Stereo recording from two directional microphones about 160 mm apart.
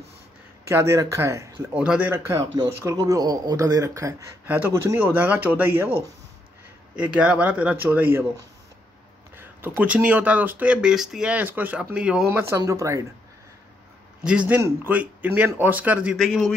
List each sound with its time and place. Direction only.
0.7 s a man's voice: 15° right (ahead or behind)
1.7 s a man's voice: 10° right (ahead or behind)
7.0 s speech: 10° right (ahead or behind)
9.4 s speech: 10° right (ahead or behind)
14.2 s speech: 5° right (ahead or behind)
16.2 s a man's voice: 5° left (ahead or behind)